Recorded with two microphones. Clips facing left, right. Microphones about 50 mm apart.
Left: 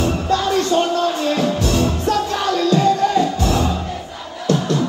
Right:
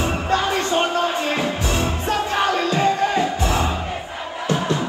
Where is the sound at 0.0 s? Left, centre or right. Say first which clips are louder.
Left 2 dB; right.